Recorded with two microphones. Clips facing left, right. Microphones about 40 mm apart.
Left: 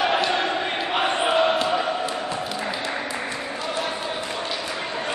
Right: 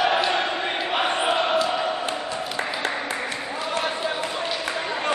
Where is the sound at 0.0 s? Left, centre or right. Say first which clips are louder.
Even; centre.